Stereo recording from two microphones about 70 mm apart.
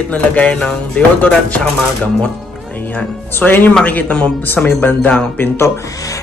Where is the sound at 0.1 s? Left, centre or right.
Centre.